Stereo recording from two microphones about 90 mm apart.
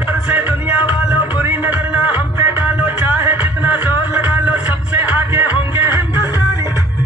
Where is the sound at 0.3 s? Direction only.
20° right (ahead or behind).